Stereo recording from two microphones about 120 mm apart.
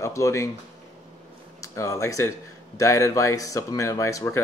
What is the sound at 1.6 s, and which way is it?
Speech, 25° left (ahead or behind).